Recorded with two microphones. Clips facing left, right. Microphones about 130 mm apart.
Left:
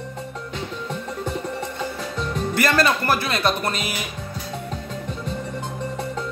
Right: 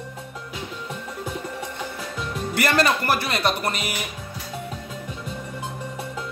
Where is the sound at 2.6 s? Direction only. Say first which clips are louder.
Left 1 dB; 20° right (ahead or behind).